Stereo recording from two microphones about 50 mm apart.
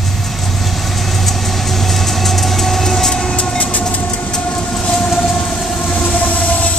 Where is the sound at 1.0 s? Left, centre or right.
Centre.